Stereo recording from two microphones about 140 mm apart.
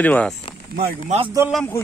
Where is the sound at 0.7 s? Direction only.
90° right.